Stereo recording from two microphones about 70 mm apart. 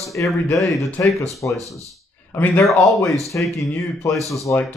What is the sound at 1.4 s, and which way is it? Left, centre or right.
Speech, left.